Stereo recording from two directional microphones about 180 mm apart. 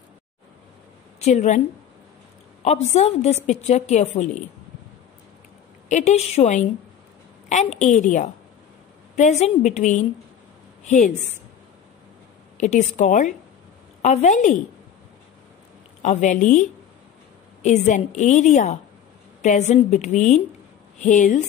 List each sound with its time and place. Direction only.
1.2 s a woman's voice: 40° left (ahead or behind)
2.6 s a woman's voice: 40° left (ahead or behind)
5.9 s a woman's voice: 40° left (ahead or behind)
12.5 s a woman's voice: 40° left (ahead or behind)
16.0 s a woman's voice: 40° left (ahead or behind)